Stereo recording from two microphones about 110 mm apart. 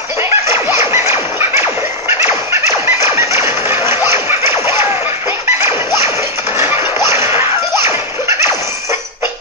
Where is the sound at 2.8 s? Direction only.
25° right (ahead or behind).